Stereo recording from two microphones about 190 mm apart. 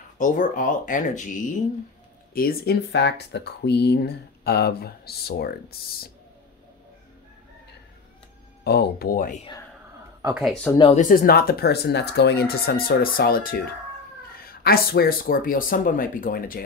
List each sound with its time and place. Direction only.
0.2 s speech: 45° left (ahead or behind)
2.3 s speech: 55° left (ahead or behind)
8.6 s speech: 55° left (ahead or behind)
10.3 s speech: centre (ahead or behind)
10.8 s speech: 35° left (ahead or behind)
11.1 s speech: 50° left (ahead or behind)